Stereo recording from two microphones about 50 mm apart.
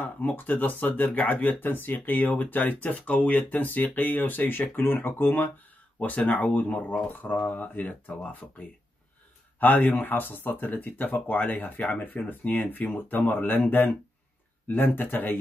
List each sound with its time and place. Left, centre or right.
0.0 s speech: left
9.6 s speech: left